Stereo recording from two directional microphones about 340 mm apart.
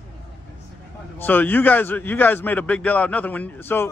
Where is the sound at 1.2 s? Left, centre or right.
Centre.